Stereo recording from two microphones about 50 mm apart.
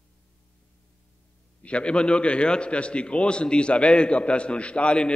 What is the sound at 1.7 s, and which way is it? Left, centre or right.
A man's voice, left.